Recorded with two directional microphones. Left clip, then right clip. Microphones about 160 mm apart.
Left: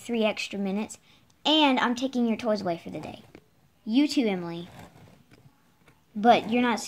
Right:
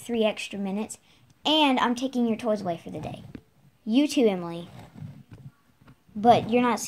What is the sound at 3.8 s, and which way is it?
Speech, 30° right (ahead or behind).